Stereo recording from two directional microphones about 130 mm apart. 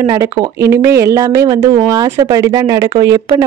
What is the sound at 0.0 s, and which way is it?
Speech, 30° right (ahead or behind).